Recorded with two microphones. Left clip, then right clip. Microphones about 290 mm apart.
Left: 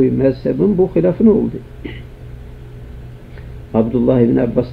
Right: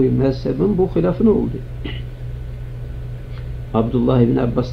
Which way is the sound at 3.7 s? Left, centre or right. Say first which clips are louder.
Left 3 dB; centre.